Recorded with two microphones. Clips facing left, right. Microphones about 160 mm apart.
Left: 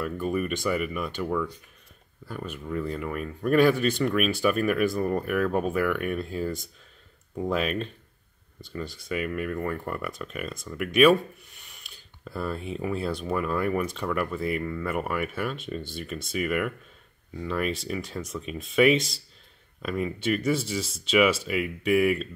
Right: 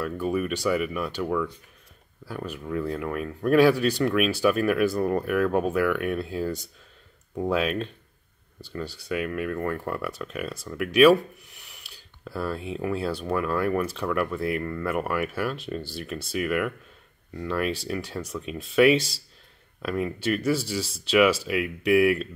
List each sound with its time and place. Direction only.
0.0 s speech: centre (ahead or behind)
2.2 s speech: 5° right (ahead or behind)
7.5 s speech: centre (ahead or behind)
9.1 s speech: centre (ahead or behind)
11.4 s a sound: 10° right (ahead or behind)
12.3 s speech: 5° right (ahead or behind)